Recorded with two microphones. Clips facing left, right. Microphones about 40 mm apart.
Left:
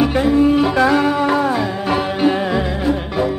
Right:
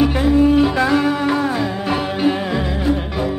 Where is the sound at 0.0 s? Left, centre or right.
Centre.